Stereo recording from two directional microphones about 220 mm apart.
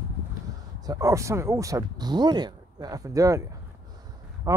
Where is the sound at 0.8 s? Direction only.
15° right (ahead or behind).